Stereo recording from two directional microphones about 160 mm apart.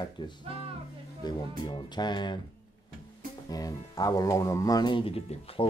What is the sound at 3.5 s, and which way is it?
Speech, 25° left (ahead or behind).